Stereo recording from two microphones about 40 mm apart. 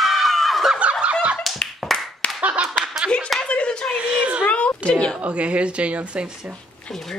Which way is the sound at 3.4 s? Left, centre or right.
Left.